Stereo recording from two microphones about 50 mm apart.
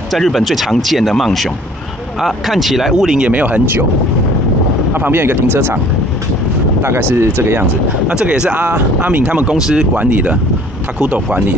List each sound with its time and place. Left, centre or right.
0.1 s speech: centre
3.3 s speech: right
4.9 s speech: right
6.8 s speech: right
8.1 s speech: centre
8.5 s speech: right
9.3 s speech: right
9.9 s speech: right